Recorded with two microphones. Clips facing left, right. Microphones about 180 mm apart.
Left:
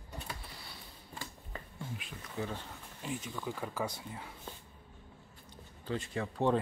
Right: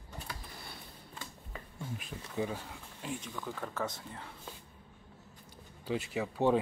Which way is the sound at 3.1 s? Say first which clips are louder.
Left 1 dB; centre (ahead or behind).